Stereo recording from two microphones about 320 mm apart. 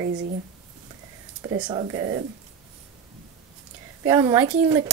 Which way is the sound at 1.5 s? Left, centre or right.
Centre.